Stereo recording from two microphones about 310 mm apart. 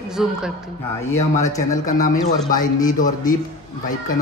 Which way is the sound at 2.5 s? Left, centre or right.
Left.